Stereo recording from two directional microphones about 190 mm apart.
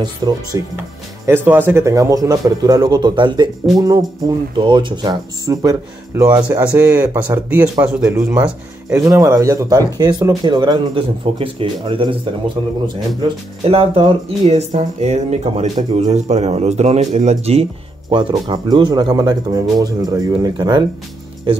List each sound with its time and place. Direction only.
0.0 s speech: 20° right (ahead or behind); by 17.6 s 35° right (ahead or behind)
18.1 s speech: 25° right (ahead or behind)